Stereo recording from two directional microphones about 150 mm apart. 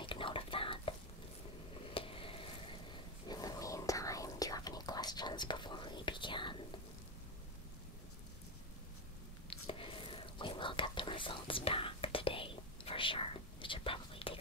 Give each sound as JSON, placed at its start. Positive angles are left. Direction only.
{"t": 0.0, "sound": "whispering", "side_deg": 35}
{"t": 1.9, "sound": "a sound", "side_deg": 35}
{"t": 3.3, "sound": "whispering", "side_deg": 25}
{"t": 9.5, "sound": "whispering", "side_deg": 35}